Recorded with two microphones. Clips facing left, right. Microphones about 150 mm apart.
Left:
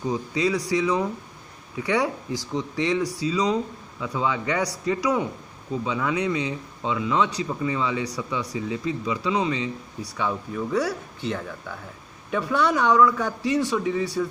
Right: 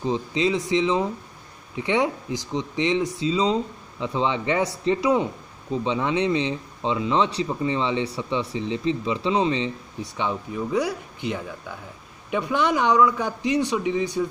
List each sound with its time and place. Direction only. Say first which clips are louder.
0.0 s a man's voice: right 1 dB; 25° right (ahead or behind)